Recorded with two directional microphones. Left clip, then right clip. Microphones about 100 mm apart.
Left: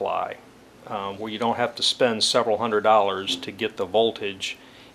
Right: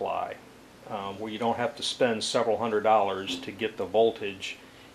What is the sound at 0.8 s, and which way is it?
Speech, 35° left (ahead or behind).